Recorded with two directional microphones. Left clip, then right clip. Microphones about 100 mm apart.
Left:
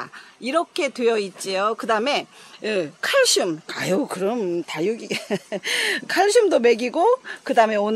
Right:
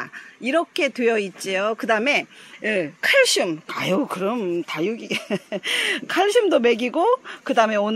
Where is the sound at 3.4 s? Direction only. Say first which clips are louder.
Right 1 dB; 20° left (ahead or behind).